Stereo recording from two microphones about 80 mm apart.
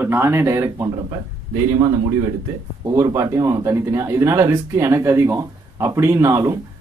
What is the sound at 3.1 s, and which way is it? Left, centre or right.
Speech, right.